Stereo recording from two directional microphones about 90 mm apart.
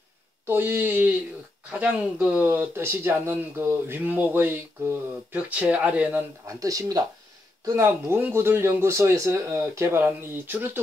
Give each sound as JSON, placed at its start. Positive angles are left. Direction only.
{"t": 0.5, "sound": "speech", "side_deg": -25}
{"t": 6.4, "sound": "speech", "side_deg": -35}
{"t": 7.8, "sound": "speech", "side_deg": -25}